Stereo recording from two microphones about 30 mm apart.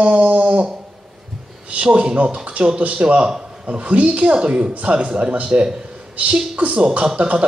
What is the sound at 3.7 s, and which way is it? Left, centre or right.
Speech, right.